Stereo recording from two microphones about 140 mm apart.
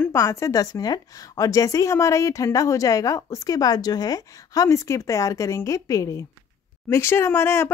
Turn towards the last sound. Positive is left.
turn(degrees=15)  # may be behind; listen again after turning